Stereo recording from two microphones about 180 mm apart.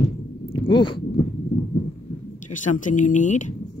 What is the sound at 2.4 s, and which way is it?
Speech, 45° left (ahead or behind).